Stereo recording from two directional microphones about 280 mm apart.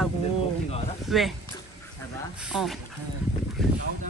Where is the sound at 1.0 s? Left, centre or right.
Centre.